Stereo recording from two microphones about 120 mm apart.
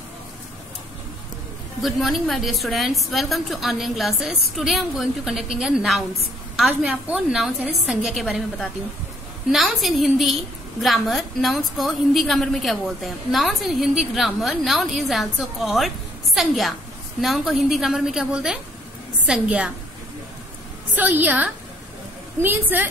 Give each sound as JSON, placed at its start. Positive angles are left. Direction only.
{"t": 1.8, "sound": "a woman's voice", "side_deg": 0}
{"t": 20.9, "sound": "a woman's voice", "side_deg": -15}